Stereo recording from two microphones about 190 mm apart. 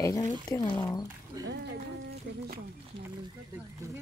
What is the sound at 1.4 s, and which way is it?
Speech, 65° right (ahead or behind).